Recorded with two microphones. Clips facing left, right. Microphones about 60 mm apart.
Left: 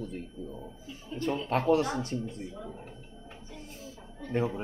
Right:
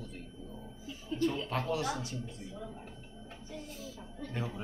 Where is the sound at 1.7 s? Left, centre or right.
Left.